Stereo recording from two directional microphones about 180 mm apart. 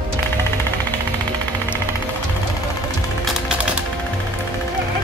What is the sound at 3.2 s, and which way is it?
Music, 5° right (ahead or behind).